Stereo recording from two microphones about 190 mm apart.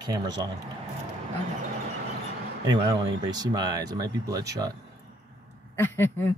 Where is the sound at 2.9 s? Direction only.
20° right (ahead or behind).